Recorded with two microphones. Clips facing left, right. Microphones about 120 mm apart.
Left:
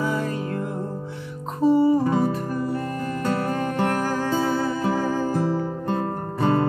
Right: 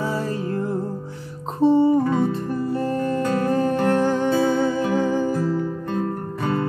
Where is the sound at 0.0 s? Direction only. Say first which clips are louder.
Even; 30° right (ahead or behind).